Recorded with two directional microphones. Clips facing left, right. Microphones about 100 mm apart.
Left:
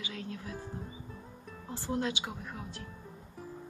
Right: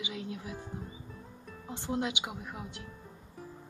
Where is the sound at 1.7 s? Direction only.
20° right (ahead or behind).